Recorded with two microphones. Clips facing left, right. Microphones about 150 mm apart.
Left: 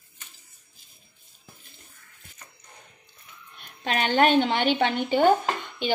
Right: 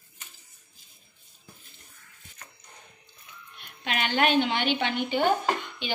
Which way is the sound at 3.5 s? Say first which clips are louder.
Left 4 dB; 40° left (ahead or behind).